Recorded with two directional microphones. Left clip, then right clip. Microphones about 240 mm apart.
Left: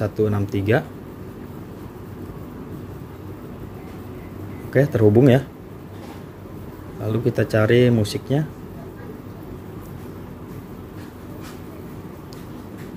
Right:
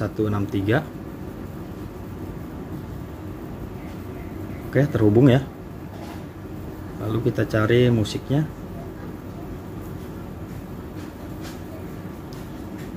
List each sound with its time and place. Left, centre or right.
0.0 s speech: centre
4.7 s speech: centre
7.1 s speech: centre